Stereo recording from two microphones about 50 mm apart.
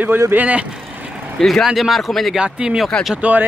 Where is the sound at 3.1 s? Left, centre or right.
Right.